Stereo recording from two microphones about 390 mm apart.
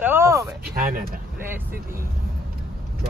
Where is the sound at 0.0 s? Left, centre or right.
Centre.